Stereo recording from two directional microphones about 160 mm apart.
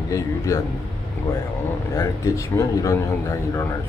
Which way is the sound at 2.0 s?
20° left (ahead or behind).